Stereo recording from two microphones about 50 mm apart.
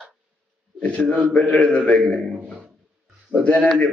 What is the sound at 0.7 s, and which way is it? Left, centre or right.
A man's voice, left.